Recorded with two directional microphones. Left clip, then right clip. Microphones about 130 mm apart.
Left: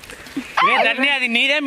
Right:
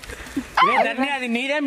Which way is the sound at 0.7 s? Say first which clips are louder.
Left 4 dB; 25° left (ahead or behind).